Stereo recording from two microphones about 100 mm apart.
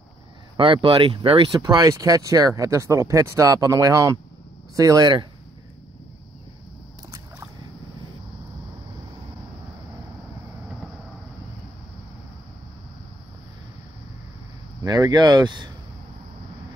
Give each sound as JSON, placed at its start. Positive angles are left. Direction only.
{"t": 0.8, "sound": "speech", "side_deg": -60}
{"t": 1.6, "sound": "speech", "side_deg": -40}
{"t": 14.9, "sound": "speech", "side_deg": -40}